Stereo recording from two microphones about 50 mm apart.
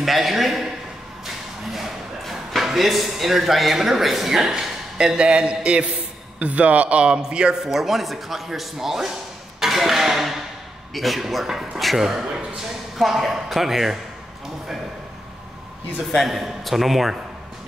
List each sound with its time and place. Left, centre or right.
0.0 s a man's voice: centre
7.6 s speech: centre
16.1 s speech: centre